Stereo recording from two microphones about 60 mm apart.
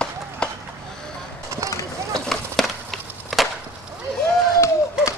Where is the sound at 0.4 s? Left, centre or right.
Centre.